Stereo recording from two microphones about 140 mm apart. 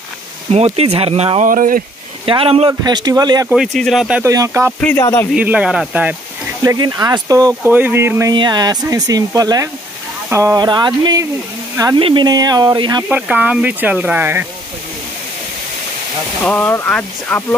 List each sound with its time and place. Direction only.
0.5 s speech: 45° right (ahead or behind)
1.4 s speech: 75° right (ahead or behind)
2.2 s speech: 40° right (ahead or behind)
3.0 s speech: 30° right (ahead or behind)
3.4 s speech: 5° right (ahead or behind)
4.2 s speech: 20° right (ahead or behind)
4.9 s speech: 20° left (ahead or behind)
5.3 s speech: 10° right (ahead or behind)
6.6 s speech: 25° right (ahead or behind)
7.7 s speech: 15° right (ahead or behind)
8.3 s speech: 30° right (ahead or behind)
13.1 s speech: 10° right (ahead or behind)
16.4 s speech: 15° left (ahead or behind)